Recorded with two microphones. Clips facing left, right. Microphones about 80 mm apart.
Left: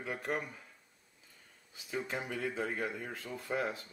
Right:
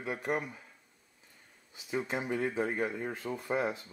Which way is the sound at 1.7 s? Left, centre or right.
Centre.